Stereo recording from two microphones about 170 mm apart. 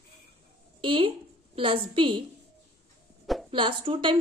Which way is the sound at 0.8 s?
30° right (ahead or behind).